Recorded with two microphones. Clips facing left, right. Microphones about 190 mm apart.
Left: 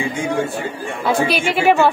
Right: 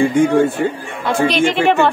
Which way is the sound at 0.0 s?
50° right (ahead or behind).